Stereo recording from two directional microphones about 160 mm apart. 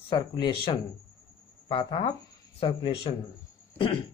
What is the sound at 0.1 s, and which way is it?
Speech, 25° left (ahead or behind).